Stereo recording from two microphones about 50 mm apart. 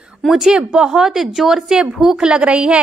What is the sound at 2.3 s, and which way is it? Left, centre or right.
Speech, right.